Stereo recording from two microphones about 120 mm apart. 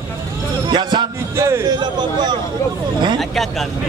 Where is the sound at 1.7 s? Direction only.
40° right (ahead or behind).